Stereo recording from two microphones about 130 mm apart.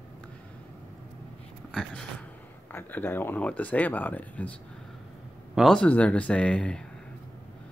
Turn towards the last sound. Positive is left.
turn(degrees=10)  # may be behind; listen again after turning